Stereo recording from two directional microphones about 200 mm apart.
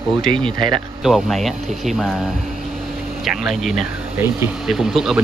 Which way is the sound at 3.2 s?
Centre (ahead or behind).